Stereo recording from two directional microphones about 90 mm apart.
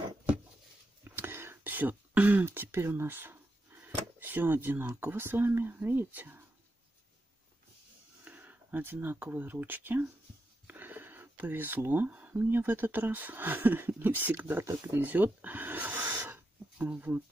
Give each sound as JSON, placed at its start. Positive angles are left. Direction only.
{"t": 1.0, "sound": "a sound", "side_deg": -25}
{"t": 4.2, "sound": "speech", "side_deg": -20}
{"t": 8.3, "sound": "speech", "side_deg": -20}